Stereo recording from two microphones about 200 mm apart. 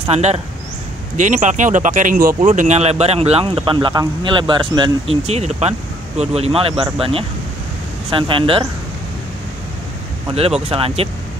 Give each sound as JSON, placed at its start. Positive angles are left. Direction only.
{"t": 0.0, "sound": "speech", "side_deg": -30}
{"t": 10.3, "sound": "speech", "side_deg": -30}